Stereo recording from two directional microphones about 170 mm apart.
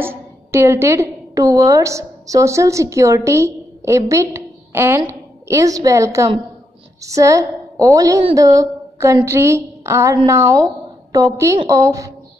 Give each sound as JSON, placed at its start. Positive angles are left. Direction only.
{"t": 0.0, "sound": "a woman's voice", "side_deg": -15}